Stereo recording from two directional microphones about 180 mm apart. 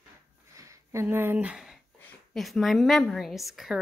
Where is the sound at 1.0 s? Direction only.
10° right (ahead or behind).